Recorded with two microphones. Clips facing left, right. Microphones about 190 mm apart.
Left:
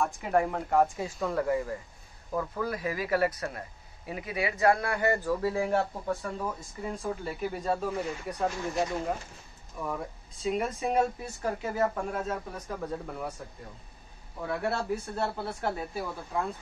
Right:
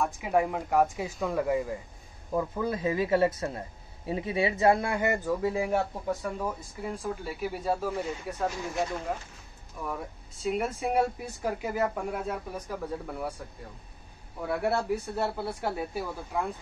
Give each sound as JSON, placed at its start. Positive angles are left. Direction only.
{"t": 0.0, "sound": "a man's voice", "side_deg": -5}
{"t": 10.5, "sound": "speech", "side_deg": -5}
{"t": 14.6, "sound": "speech", "side_deg": -10}